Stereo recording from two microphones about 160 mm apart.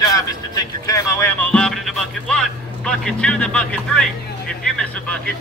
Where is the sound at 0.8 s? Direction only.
20° left (ahead or behind).